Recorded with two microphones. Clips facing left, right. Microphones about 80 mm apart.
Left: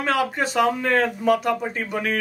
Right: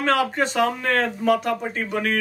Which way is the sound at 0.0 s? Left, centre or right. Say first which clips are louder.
Right 1 dB; centre.